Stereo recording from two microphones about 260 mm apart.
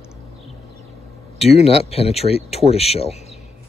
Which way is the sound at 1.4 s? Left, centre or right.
Left.